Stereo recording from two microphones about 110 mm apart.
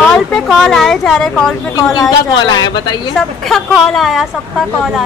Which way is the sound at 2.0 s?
35° left (ahead or behind).